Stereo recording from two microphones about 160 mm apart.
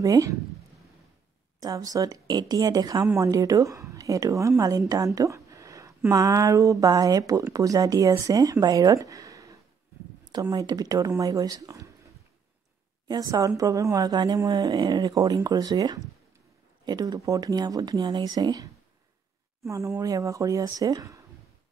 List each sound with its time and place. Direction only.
0.0 s speech: 20° right (ahead or behind)
1.6 s a woman's voice: 20° right (ahead or behind)
13.1 s speech: 20° right (ahead or behind)